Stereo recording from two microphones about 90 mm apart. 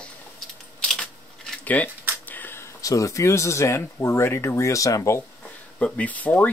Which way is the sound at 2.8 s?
40° left (ahead or behind).